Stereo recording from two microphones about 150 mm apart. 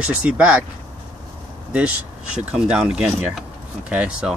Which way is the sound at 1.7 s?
10° right (ahead or behind).